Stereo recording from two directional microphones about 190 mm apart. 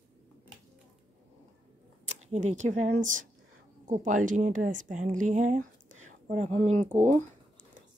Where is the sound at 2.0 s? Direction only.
35° right (ahead or behind).